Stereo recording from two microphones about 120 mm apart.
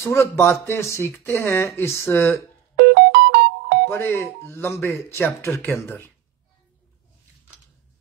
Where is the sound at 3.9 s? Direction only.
20° left (ahead or behind).